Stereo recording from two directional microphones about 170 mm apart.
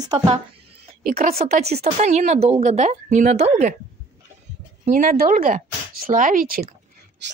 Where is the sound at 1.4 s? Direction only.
40° right (ahead or behind).